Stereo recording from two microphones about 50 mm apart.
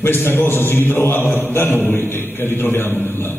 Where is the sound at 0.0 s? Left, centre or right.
Left.